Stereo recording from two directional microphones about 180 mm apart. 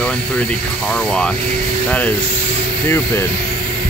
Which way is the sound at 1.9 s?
5° left (ahead or behind).